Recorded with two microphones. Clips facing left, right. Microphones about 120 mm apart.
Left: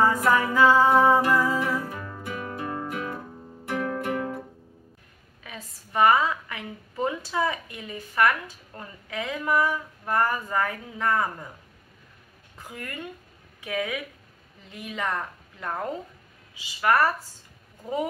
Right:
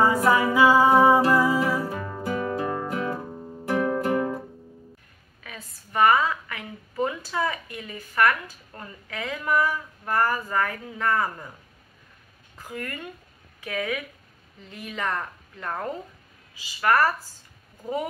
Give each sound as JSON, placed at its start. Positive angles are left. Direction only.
{"t": 0.0, "sound": "music", "side_deg": -15}
{"t": 1.8, "sound": "music", "side_deg": -35}
{"t": 5.4, "sound": "a woman's voice", "side_deg": 20}
{"t": 12.7, "sound": "speech", "side_deg": 15}